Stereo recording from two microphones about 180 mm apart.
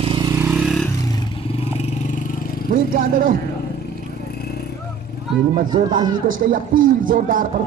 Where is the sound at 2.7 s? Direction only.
50° right (ahead or behind).